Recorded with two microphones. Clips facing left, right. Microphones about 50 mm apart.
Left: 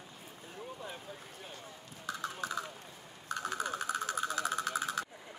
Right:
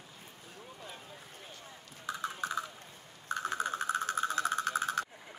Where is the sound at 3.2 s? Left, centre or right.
Right.